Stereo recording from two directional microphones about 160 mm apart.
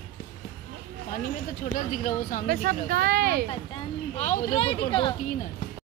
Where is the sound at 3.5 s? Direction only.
30° left (ahead or behind).